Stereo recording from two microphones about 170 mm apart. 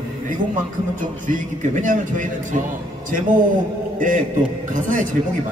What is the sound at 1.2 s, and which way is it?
A man's voice, 50° right (ahead or behind).